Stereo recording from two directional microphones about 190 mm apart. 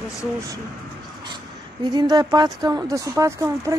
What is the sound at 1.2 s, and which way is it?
Speech, 25° right (ahead or behind).